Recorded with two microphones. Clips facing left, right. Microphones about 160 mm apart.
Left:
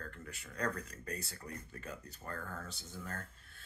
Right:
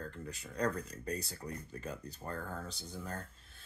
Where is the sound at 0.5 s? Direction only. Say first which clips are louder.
Right 4 dB; 20° right (ahead or behind).